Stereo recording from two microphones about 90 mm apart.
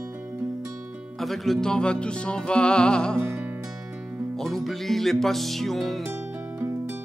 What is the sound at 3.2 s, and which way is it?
Music, 25° right (ahead or behind).